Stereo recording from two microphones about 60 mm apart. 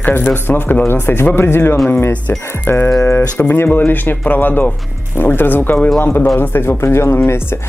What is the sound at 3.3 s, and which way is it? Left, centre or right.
Speech, left.